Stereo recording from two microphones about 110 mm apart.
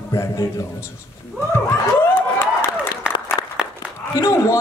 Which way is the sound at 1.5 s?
20° left (ahead or behind).